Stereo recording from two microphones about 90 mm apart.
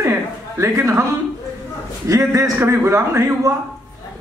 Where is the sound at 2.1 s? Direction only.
40° right (ahead or behind).